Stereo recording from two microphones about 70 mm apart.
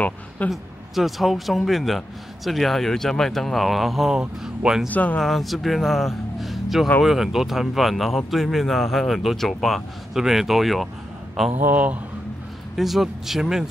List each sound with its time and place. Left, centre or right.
0.5 s a man's voice: centre
4.8 s speech: left
5.2 s a man's voice: centre
11.6 s speech: right
12.7 s a man's voice: centre